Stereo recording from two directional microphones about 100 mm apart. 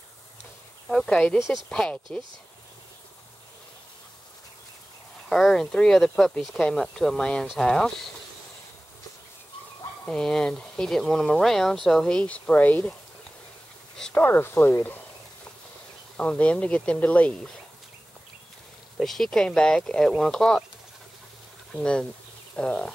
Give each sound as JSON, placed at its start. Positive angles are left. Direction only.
{"t": 0.8, "sound": "speech", "side_deg": 5}
{"t": 5.3, "sound": "speech", "side_deg": 5}
{"t": 10.0, "sound": "speech", "side_deg": 5}
{"t": 13.9, "sound": "speech", "side_deg": 10}
{"t": 16.2, "sound": "speech", "side_deg": 15}
{"t": 18.9, "sound": "speech", "side_deg": 5}
{"t": 21.7, "sound": "speech", "side_deg": 10}